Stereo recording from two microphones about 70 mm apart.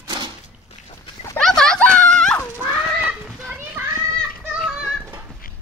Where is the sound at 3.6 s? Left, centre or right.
Right.